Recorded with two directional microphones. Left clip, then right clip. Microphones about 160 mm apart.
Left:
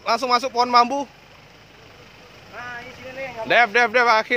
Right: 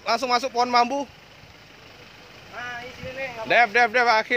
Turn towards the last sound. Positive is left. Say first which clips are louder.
# left 2 dB
turn(degrees=15)  # may be behind; listen again after turning